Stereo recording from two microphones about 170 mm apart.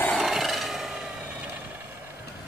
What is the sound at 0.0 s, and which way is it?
Wood, centre (ahead or behind).